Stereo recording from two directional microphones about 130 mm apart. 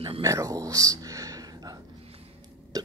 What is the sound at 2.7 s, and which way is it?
Hiccup, 30° right (ahead or behind).